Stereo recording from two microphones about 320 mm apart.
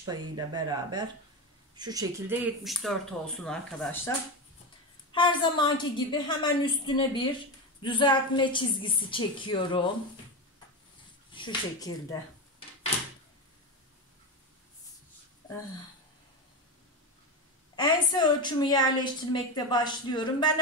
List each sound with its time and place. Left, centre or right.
0.0 s speech: centre
5.1 s a woman's voice: centre
11.3 s speech: centre
17.7 s a woman's voice: centre